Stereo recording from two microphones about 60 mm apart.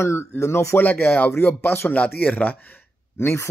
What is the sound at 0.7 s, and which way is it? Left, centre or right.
Speech, left.